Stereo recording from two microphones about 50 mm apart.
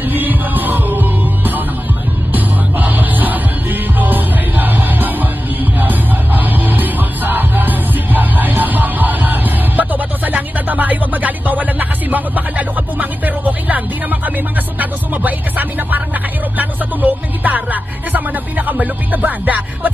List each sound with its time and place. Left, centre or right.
0.1 s music: right
18.7 s music: right